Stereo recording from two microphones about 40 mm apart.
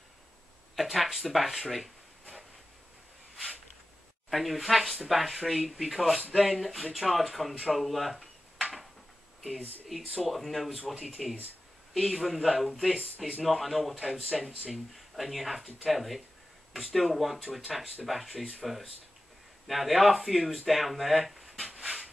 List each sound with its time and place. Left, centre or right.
0.7 s speech: centre
1.6 s a sound: centre
4.3 s speech: centre
9.8 s speech: centre
13.9 s speech: right
14.7 s speech: centre
21.7 s dog: right